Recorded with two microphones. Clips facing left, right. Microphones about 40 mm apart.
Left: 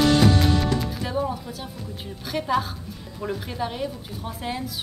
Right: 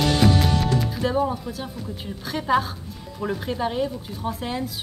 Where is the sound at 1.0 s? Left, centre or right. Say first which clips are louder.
Right 4 dB; centre.